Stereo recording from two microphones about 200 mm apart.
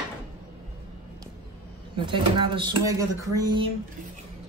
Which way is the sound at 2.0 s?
25° right (ahead or behind).